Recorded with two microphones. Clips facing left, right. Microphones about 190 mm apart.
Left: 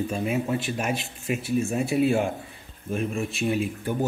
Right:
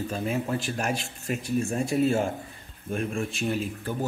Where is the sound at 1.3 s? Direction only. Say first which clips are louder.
Left 2 dB; 5° left (ahead or behind).